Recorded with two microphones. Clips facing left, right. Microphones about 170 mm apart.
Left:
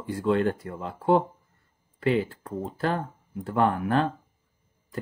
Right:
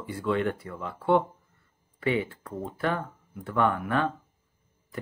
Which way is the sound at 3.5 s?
30° left (ahead or behind).